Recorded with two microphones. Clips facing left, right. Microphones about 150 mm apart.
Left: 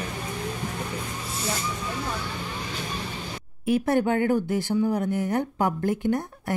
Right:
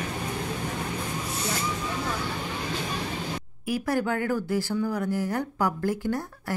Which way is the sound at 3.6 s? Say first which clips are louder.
Left 5 dB; 25° left (ahead or behind).